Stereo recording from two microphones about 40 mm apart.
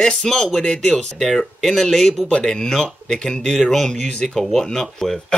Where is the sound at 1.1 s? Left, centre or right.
Centre.